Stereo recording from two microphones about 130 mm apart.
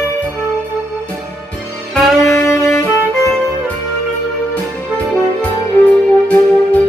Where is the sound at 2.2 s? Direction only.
20° left (ahead or behind).